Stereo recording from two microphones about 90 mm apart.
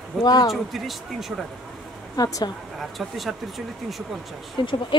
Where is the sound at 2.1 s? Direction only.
45° left (ahead or behind).